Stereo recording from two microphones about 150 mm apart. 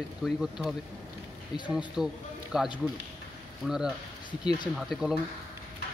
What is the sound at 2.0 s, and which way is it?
Speech, 5° right (ahead or behind).